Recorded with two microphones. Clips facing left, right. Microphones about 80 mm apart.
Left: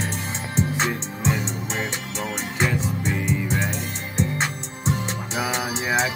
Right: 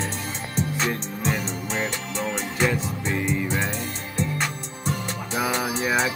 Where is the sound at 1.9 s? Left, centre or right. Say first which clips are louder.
Right 1 dB; centre.